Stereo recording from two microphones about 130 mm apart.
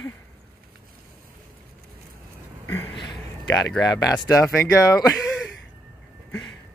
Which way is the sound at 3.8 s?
25° left (ahead or behind).